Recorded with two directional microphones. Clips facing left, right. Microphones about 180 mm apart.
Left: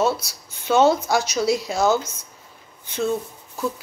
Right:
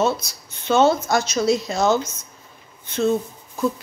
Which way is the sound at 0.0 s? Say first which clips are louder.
Even; 10° left (ahead or behind).